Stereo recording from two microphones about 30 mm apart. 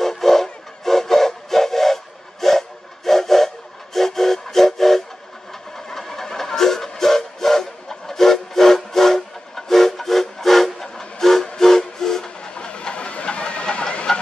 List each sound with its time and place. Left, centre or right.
0.0 s steam whistle: centre
11.5 s train: centre
12.5 s a sound: left